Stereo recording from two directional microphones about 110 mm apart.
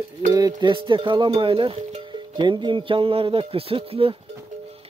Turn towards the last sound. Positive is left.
turn(degrees=-60)  # may be behind; listen again after turning